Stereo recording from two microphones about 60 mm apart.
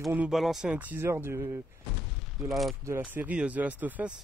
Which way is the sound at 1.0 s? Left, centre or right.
Right.